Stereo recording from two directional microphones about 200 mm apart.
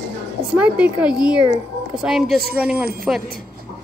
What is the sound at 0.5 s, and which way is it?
Speech, 5° right (ahead or behind).